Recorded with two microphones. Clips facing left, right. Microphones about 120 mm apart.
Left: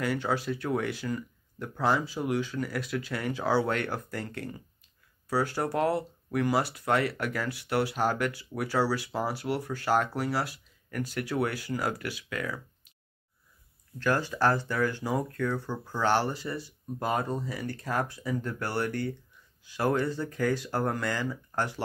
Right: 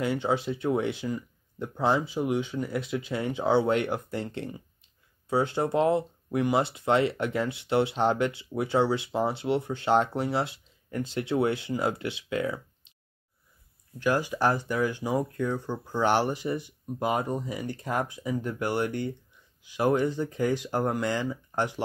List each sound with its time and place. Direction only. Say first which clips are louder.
0.0 s speech: right 2 dB; 20° right (ahead or behind)
13.9 s speech: right 2 dB; 15° right (ahead or behind)